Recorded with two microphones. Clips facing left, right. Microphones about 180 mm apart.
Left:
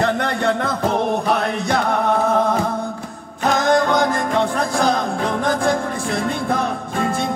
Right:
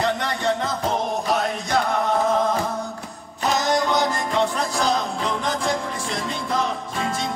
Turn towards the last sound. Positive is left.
turn(degrees=55)  # may be behind; listen again after turning